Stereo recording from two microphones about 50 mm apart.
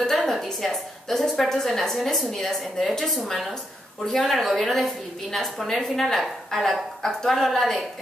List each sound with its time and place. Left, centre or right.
0.0 s a woman's voice: centre